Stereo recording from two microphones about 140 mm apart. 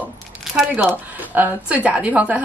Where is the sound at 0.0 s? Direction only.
Centre (ahead or behind).